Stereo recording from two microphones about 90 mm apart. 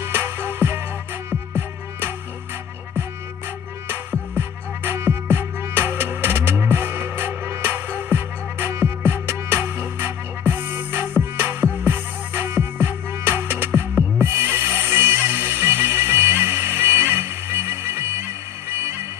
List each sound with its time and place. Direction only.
0.0 s music: 25° right (ahead or behind)
3.9 s music: 20° right (ahead or behind)